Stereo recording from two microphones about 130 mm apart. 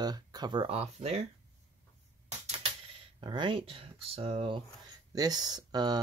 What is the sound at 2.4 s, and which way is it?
Typewriter, 55° right (ahead or behind).